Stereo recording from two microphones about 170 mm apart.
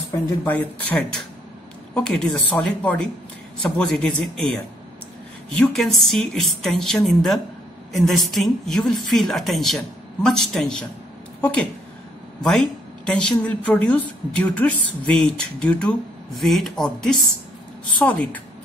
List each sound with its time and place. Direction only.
0.1 s a woman's voice: 10° left (ahead or behind)
5.6 s a woman's voice: centre (ahead or behind)
13.0 s a woman's voice: 5° left (ahead or behind)